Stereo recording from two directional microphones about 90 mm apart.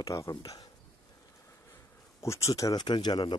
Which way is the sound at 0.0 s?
40° left (ahead or behind).